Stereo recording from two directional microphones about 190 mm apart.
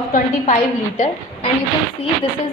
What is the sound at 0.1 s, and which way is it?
Speech, 40° left (ahead or behind).